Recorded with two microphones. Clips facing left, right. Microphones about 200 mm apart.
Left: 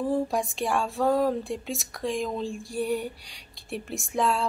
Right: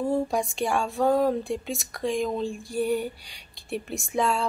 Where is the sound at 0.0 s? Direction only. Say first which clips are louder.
Right 1 dB; centre (ahead or behind).